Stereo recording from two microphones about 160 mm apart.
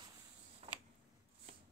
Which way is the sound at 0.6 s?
35° right (ahead or behind).